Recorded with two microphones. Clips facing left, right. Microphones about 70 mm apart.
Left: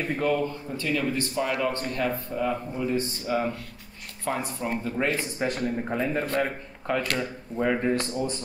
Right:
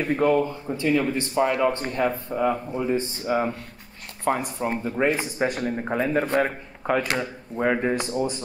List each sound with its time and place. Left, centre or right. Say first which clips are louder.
0.1 s a man's voice: right 6 dB; right
7.9 s speech: right 2 dB; centre